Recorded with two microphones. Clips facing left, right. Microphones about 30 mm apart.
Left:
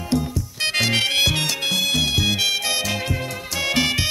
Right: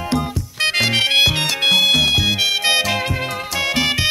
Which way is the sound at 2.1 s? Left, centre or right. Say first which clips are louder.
Right 3 dB; right.